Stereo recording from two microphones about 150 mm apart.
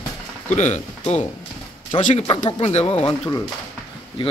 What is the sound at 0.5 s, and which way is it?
Speech, 50° left (ahead or behind).